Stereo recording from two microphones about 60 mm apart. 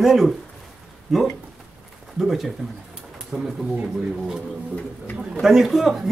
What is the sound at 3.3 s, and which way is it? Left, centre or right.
Speech, centre.